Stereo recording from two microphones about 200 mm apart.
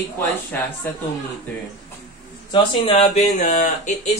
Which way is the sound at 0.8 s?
10° left (ahead or behind).